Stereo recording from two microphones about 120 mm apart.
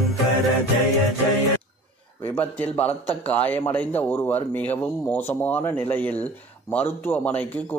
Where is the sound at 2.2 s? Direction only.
15° left (ahead or behind).